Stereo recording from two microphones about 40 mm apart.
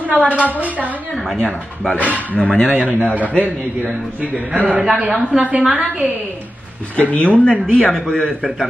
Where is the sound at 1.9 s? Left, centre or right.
Right.